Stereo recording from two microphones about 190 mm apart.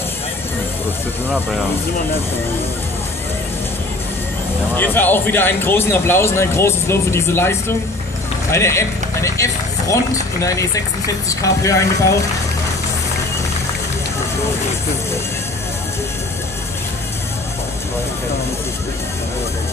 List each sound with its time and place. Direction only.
4.7 s speech: 10° left (ahead or behind)
8.5 s vehicle: 15° left (ahead or behind)
10.4 s speech: 15° left (ahead or behind)